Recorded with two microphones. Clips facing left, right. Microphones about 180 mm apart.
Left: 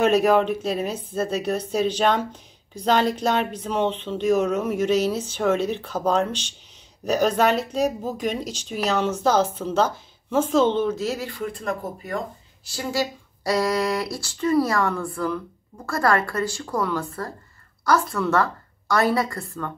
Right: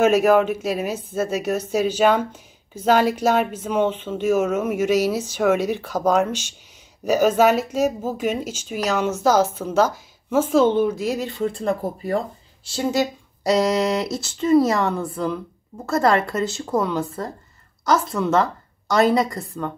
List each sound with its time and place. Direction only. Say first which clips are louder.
0.0 s speech: right 2 dB; 5° right (ahead or behind)